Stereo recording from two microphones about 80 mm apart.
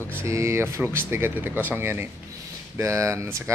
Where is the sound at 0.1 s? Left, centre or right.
Right.